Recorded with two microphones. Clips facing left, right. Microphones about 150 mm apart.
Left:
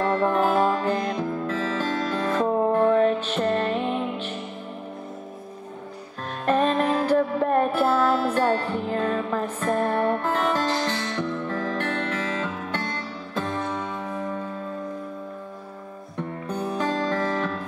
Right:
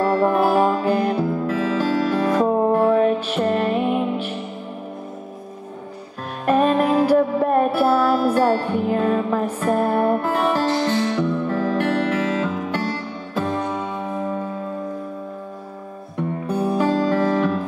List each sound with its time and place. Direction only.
0.0 s music: 10° right (ahead or behind)
6.4 s music: 10° right (ahead or behind)
16.2 s music: 10° right (ahead or behind)